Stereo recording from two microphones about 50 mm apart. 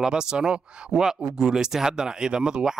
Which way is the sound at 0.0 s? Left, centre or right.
Centre.